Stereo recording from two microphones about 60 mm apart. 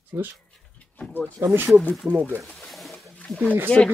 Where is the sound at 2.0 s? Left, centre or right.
Right.